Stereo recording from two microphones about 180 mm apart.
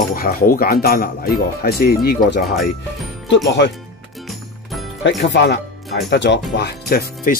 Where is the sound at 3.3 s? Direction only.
80° left.